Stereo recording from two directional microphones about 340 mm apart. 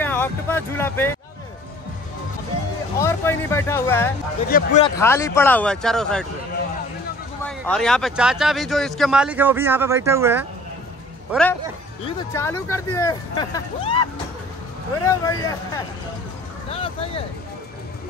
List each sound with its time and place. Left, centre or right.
0.0 s music: centre
3.0 s speech: centre
4.5 s speech: left
4.8 s speech: centre
7.4 s speech: centre
12.2 s speech: centre
15.0 s speech: centre
16.7 s vehicle: centre